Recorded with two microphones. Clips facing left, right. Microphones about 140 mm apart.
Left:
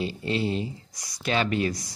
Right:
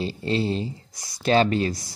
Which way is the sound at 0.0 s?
30° right (ahead or behind).